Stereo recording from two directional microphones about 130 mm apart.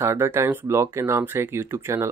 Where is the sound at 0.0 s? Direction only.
20° right (ahead or behind).